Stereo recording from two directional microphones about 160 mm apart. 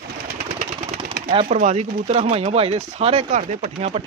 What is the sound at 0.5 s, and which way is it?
Vehicle, 50° right (ahead or behind).